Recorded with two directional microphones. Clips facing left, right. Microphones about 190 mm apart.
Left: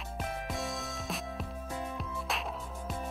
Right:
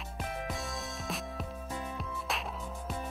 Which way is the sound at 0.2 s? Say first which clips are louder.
Left 1 dB; centre (ahead or behind).